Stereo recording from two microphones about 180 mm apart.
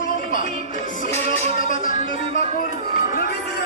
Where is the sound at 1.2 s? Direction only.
40° right (ahead or behind).